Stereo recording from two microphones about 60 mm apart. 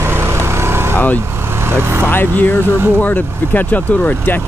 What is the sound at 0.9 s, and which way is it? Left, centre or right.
Speech, left.